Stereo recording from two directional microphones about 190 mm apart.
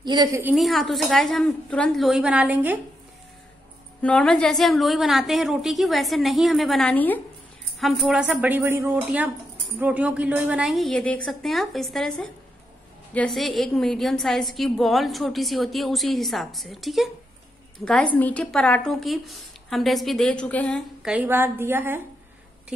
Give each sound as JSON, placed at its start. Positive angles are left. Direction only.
{"t": 0.0, "sound": "a woman's voice", "side_deg": -20}
{"t": 0.6, "sound": "a woman's voice", "side_deg": 0}
{"t": 4.0, "sound": "a woman's voice", "side_deg": 5}
{"t": 17.8, "sound": "a woman's voice", "side_deg": 15}
{"t": 21.0, "sound": "a woman's voice", "side_deg": -5}